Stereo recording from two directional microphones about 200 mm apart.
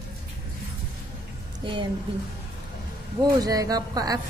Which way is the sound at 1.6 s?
25° right (ahead or behind).